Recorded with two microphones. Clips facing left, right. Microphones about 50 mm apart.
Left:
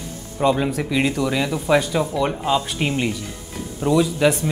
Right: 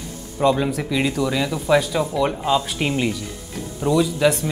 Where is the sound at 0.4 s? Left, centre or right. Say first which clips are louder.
Even; centre.